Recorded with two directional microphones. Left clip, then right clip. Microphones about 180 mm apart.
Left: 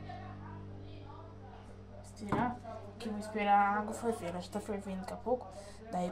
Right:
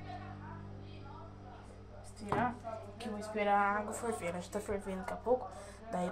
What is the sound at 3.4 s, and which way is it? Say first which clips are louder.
Speech: left 2 dB; 20° right (ahead or behind).